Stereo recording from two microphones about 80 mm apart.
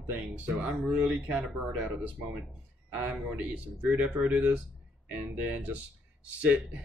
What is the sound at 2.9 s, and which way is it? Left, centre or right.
Speech, centre.